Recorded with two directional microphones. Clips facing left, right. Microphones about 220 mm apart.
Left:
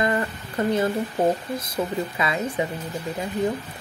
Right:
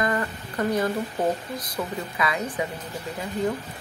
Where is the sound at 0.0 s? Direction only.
25° left (ahead or behind).